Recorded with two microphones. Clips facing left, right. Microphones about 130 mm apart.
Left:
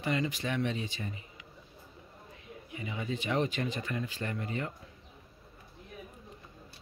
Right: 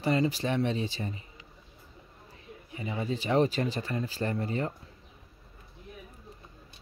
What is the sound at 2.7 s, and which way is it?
Speech, 35° right (ahead or behind).